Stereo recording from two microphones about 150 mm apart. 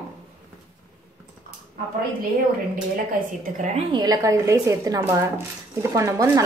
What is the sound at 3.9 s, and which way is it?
Speech, 25° right (ahead or behind).